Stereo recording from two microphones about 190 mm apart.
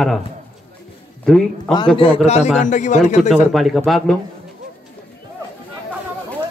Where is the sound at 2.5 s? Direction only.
40° left (ahead or behind).